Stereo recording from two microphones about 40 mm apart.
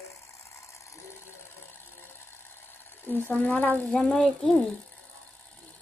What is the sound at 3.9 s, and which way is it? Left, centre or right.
Speech, left.